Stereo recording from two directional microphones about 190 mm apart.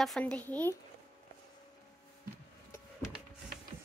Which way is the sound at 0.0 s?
5° left (ahead or behind).